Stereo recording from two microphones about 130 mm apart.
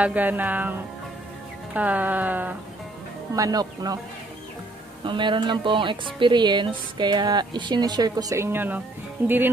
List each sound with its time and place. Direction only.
0.0 s speech: 10° right (ahead or behind)
3.3 s speech: 30° right (ahead or behind)
5.0 s a woman's voice: 40° right (ahead or behind); by 9.3 s 15° right (ahead or behind)